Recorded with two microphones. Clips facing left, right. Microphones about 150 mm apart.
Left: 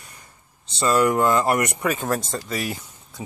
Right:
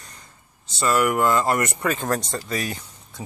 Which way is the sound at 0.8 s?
20° left (ahead or behind).